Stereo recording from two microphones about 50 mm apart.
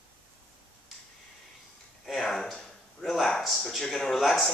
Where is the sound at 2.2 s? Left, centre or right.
Centre.